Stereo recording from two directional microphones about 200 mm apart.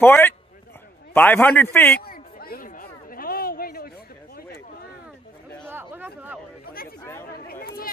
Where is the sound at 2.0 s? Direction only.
50° left (ahead or behind).